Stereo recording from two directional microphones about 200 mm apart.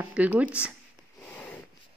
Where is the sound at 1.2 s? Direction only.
5° left (ahead or behind).